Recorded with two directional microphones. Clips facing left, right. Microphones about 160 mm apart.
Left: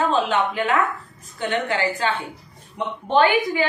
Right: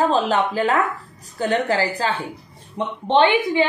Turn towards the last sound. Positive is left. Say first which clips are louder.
# right 2 dB
turn(degrees=-25)  # may be behind; listen again after turning